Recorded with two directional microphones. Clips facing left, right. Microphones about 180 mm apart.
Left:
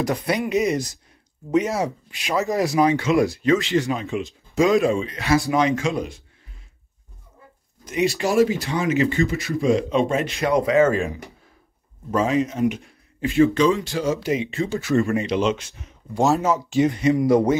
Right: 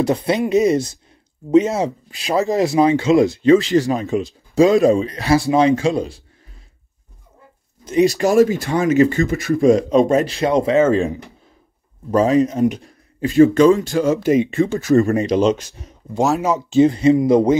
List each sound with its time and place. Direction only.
0.0 s speech: 25° right (ahead or behind)
7.8 s speech: 35° right (ahead or behind)
12.1 s speech: 40° right (ahead or behind)
16.2 s speech: centre (ahead or behind)
16.4 s speech: 20° right (ahead or behind)